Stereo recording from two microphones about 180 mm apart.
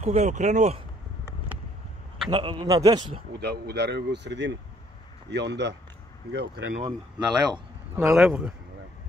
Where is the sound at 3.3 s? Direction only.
65° right (ahead or behind).